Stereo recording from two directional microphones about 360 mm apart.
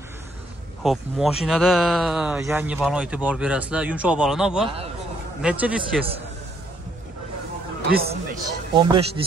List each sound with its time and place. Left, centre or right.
0.8 s speech: centre
7.9 s a man's voice: right
8.7 s speech: centre